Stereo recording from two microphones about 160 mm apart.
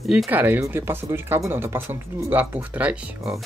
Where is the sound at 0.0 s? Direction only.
Centre (ahead or behind).